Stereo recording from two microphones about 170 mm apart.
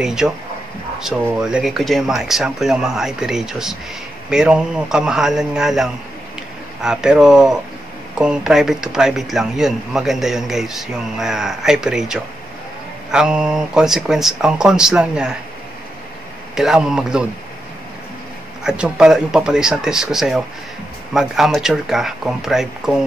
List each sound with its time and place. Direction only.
0.0 s speech: 5° right (ahead or behind)
16.5 s speech: 5° right (ahead or behind)
18.6 s speech: 5° right (ahead or behind)